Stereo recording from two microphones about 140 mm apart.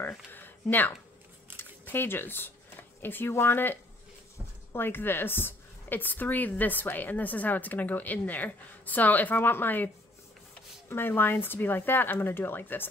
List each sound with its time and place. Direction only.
0.3 s a woman's voice: 15° left (ahead or behind)
10.9 s a woman's voice: 15° left (ahead or behind)